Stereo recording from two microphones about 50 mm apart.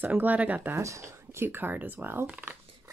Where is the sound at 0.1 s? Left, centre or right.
Right.